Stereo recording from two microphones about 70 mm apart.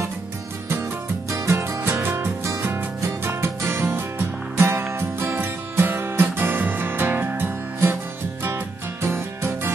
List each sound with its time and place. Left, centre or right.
1.4 s music: right
2.6 s music: right